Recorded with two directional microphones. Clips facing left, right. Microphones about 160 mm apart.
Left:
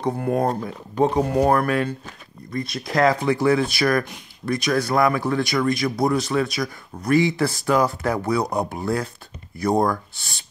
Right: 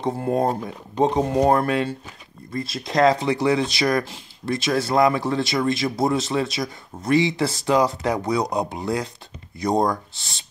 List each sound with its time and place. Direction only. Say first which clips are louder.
0.0 s speech: even; 25° right (ahead or behind)